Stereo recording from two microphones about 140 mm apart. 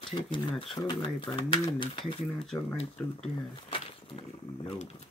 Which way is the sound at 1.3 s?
35° left (ahead or behind).